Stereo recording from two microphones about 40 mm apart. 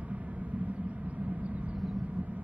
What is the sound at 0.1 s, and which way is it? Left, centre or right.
Vehicle, right.